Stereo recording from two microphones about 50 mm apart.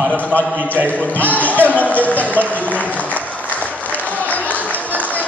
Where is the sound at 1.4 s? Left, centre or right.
Left.